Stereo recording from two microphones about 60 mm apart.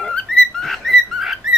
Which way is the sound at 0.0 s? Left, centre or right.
Centre.